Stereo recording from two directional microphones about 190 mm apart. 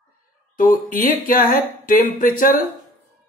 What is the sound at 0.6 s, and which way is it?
Speech, 45° left (ahead or behind).